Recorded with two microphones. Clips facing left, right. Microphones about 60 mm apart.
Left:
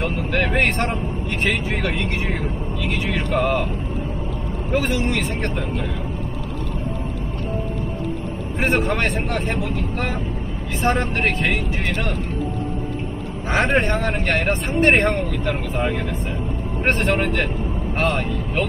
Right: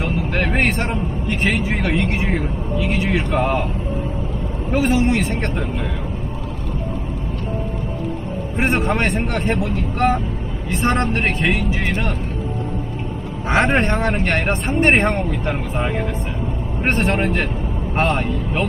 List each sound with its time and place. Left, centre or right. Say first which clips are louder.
0.0 s vehicle: right 1 dB; centre
1.4 s speech: right 2 dB; centre
3.3 s a man's voice: left 3 dB; centre
4.7 s speech: right 4 dB; centre
8.6 s a man's voice: right 1 dB; right
10.8 s speech: right 1 dB; centre
13.5 s speech: right 2 dB; centre
17.0 s speech: right 3 dB; centre
17.9 s speech: right 3 dB; right